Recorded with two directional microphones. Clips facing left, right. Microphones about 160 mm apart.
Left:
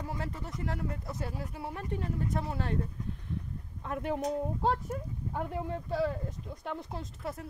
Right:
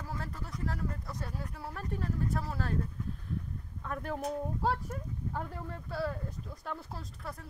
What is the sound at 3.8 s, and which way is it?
Speech, 20° left (ahead or behind).